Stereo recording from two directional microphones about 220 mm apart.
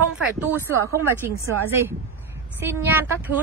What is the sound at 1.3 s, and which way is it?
Speech, 15° left (ahead or behind).